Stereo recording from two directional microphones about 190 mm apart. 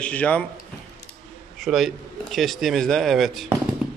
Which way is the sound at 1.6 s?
Centre (ahead or behind).